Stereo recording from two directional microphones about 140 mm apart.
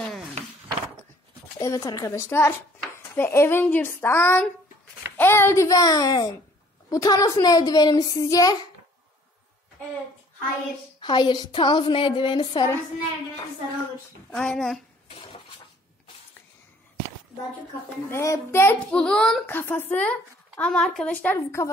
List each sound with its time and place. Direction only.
0.0 s a sound: 5° left (ahead or behind)
1.6 s a child's voice: 25° left (ahead or behind)
11.0 s a woman's voice: 35° left (ahead or behind)
14.3 s a child's voice: 5° left (ahead or behind)
15.0 s a sound: 45° left (ahead or behind)
18.1 s a child's voice: 20° left (ahead or behind)